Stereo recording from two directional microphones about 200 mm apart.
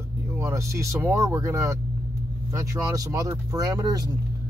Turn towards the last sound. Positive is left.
turn(degrees=-20)  # may be behind; listen again after turning